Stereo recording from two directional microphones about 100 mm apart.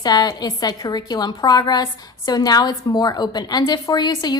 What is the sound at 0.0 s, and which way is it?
A woman's voice, 40° left (ahead or behind).